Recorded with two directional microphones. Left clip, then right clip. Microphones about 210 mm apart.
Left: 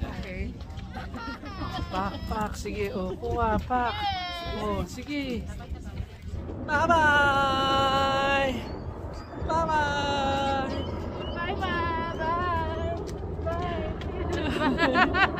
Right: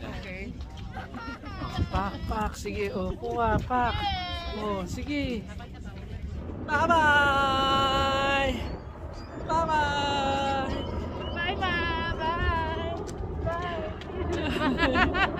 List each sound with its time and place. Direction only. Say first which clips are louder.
1.9 s speech: even; 5° right (ahead or behind)
4.0 s baby cry: left 1 dB; 20° left (ahead or behind)
4.6 s speech: even; 15° right (ahead or behind)
6.7 s a sound: even; centre (ahead or behind)
10.8 s vehicle: even; 25° right (ahead or behind)
11.3 s vehicle: right 1 dB; 15° right (ahead or behind)
13.5 s vehicle: even; centre (ahead or behind)
15.0 s a sound: left 4 dB; 5° left (ahead or behind)